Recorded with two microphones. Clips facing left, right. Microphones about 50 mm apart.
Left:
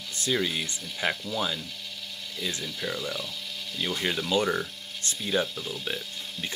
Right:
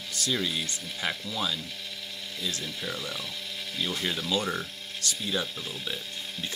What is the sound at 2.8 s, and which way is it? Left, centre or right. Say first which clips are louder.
Speech: left 6 dB; centre.